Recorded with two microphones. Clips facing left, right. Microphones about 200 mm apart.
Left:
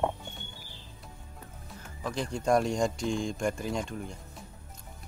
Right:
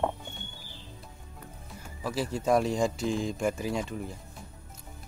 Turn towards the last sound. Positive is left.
turn(degrees=0)  # may be behind; listen again after turning